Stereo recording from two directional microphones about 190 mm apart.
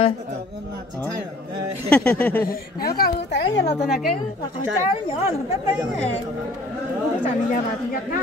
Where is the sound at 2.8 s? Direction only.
55° left (ahead or behind).